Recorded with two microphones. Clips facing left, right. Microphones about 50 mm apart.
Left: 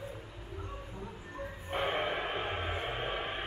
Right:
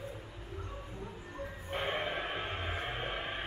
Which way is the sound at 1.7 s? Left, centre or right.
Centre.